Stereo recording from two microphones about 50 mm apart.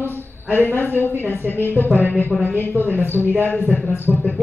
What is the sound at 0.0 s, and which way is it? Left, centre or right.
A woman's voice, left.